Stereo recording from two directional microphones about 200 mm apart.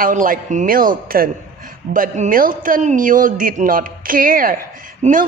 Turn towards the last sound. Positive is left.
turn(degrees=-40)  # may be behind; listen again after turning